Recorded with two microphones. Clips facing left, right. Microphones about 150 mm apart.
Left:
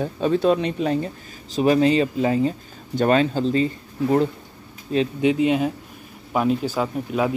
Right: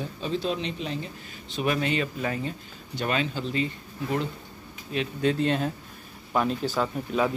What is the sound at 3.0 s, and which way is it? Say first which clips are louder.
Speech: left 10 dB; 45° left (ahead or behind).